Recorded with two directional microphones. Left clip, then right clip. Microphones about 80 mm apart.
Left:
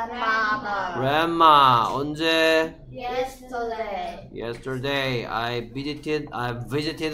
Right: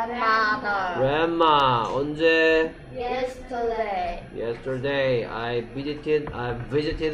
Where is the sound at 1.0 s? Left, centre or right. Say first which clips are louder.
Left 4 dB; left.